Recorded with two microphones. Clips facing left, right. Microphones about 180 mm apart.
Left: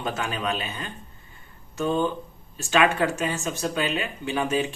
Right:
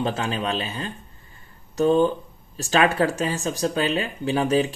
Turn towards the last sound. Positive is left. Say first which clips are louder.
# right 4 dB
turn(degrees=-35)  # may be behind; listen again after turning